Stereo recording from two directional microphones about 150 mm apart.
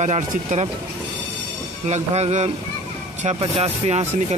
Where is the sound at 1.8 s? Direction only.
45° right (ahead or behind).